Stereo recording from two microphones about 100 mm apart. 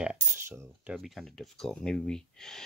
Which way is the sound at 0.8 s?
5° right (ahead or behind).